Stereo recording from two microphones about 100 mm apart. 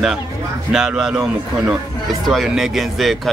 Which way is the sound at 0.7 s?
10° right (ahead or behind).